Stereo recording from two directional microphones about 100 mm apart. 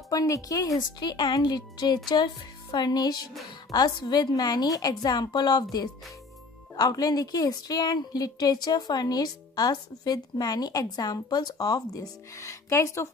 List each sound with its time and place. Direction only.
0.1 s a woman's voice: 35° left (ahead or behind)